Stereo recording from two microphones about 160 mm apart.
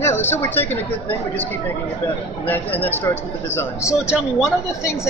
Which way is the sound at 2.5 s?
10° left (ahead or behind).